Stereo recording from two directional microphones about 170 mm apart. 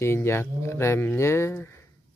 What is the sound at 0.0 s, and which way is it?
Speech, 15° left (ahead or behind).